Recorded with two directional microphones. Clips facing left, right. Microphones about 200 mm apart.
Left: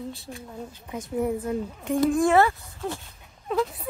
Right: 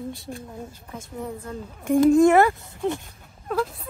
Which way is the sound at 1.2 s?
15° left (ahead or behind).